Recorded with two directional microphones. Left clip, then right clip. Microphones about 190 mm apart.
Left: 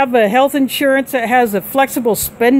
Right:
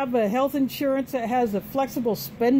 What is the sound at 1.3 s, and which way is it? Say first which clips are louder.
Speech: left 11 dB; 60° left (ahead or behind).